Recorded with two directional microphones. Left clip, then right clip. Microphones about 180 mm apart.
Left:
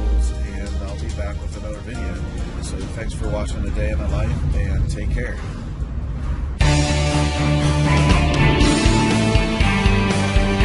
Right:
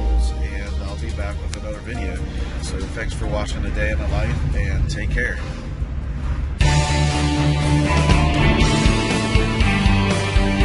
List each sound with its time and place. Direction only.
3.0 s speech: 5° left (ahead or behind)
6.6 s music: centre (ahead or behind)